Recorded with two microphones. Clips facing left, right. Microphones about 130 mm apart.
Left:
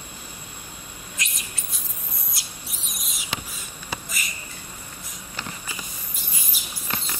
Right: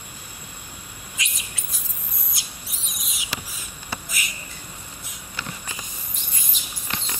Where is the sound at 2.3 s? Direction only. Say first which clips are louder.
Even; centre (ahead or behind).